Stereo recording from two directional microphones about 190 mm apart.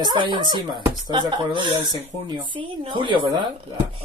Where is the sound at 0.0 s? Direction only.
25° right (ahead or behind).